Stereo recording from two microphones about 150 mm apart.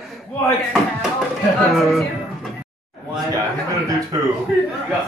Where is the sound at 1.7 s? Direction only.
Centre (ahead or behind).